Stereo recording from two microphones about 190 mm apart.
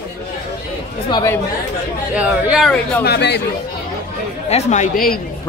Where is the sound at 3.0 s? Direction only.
60° left (ahead or behind).